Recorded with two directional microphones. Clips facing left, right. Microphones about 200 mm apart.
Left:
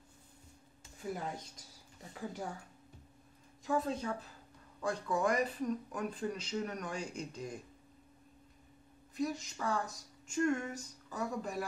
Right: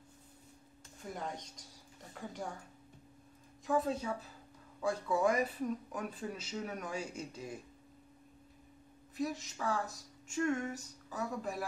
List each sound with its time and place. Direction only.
1.0 s speech: 5° left (ahead or behind)
3.6 s speech: centre (ahead or behind)
9.1 s speech: centre (ahead or behind)